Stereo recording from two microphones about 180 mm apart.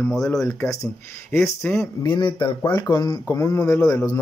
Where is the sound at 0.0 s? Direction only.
Centre (ahead or behind).